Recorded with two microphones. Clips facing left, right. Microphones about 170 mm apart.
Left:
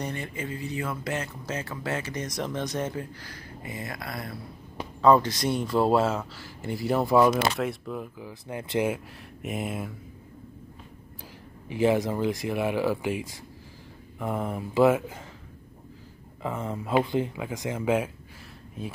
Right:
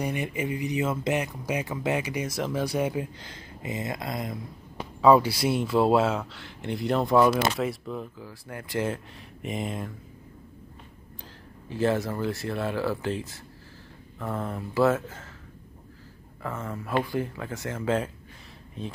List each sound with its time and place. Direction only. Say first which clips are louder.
0.0 s speech: right 4 dB; 15° right (ahead or behind)
5.0 s speech: right 1 dB; 10° right (ahead or behind)
8.2 s speech: left 3 dB; 20° left (ahead or behind)
11.7 s speech: left 2 dB; 15° left (ahead or behind)
16.4 s speech: left 3 dB; 15° left (ahead or behind)